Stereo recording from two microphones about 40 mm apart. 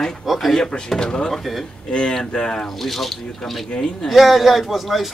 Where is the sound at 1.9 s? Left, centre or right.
Left.